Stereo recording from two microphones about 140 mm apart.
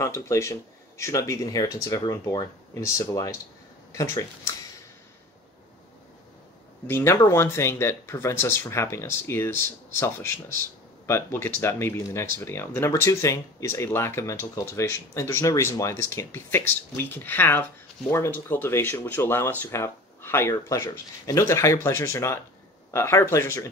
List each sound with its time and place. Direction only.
0.0 s speech: 20° left (ahead or behind)
6.9 s speech: 15° left (ahead or behind)